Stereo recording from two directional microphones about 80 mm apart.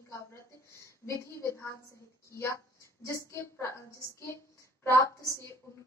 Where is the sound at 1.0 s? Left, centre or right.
Left.